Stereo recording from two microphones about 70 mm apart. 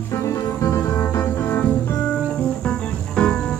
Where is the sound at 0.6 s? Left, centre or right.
Left.